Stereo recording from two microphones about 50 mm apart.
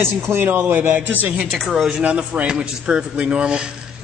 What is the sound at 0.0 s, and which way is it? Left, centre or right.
Speech, right.